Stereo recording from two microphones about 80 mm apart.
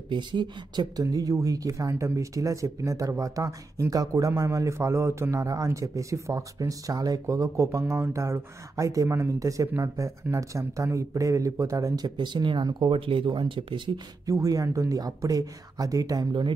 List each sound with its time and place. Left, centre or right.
0.1 s speech: right
1.1 s speech: right
14.2 s speech: right